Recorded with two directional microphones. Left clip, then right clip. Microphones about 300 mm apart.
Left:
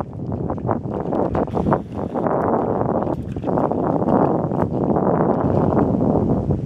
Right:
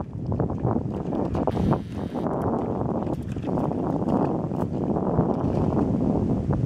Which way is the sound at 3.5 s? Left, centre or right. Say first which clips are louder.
Left 8 dB; right.